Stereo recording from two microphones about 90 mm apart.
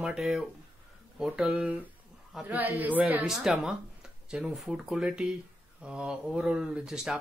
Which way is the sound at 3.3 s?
5° right (ahead or behind).